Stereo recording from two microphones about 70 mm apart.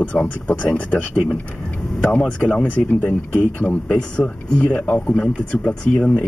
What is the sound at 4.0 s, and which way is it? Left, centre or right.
Speech, centre.